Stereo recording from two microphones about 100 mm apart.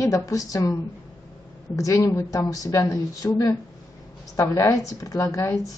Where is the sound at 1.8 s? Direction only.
35° left (ahead or behind).